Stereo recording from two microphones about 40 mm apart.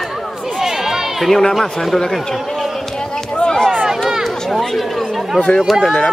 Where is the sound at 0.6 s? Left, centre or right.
Centre.